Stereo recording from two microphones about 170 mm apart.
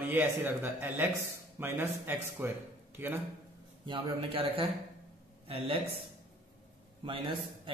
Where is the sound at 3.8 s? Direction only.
30° right (ahead or behind).